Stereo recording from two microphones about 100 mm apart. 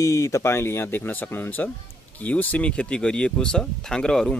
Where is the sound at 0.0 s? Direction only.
30° left (ahead or behind).